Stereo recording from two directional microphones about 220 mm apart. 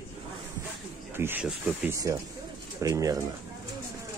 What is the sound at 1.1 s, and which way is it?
Speech, 10° right (ahead or behind).